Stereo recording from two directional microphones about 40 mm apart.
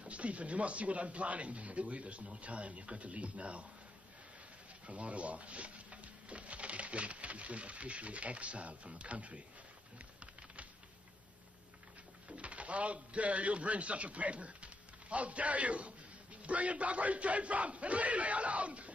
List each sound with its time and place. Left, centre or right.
0.0 s speech: right
4.8 s speech: right
12.3 s a man's voice: right